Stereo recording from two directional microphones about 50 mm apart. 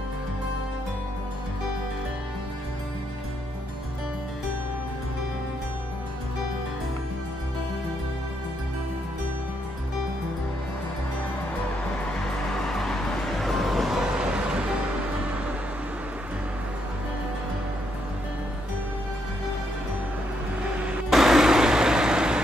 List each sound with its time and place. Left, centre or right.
12.6 s music: centre
14.0 s music: centre
20.6 s music: right
21.1 s vehicle: centre